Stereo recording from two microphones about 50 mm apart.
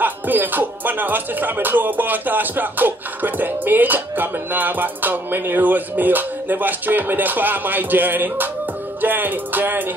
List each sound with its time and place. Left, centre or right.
0.0 s music: right